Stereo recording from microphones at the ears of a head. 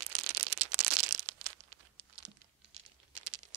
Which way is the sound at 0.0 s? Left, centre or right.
Right.